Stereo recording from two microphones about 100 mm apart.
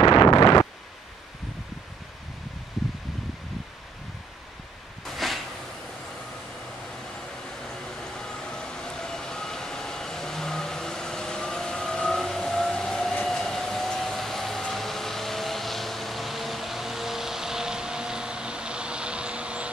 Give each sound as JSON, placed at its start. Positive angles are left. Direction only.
{"t": 0.0, "sound": "wind noise", "side_deg": 55}
{"t": 5.0, "sound": "a sound", "side_deg": 0}
{"t": 8.2, "sound": "vehicle", "side_deg": 5}